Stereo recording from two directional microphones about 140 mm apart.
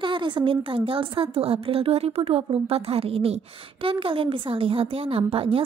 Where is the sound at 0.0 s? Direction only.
35° right (ahead or behind).